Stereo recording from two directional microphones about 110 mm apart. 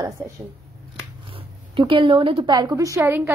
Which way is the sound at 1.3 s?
50° right (ahead or behind).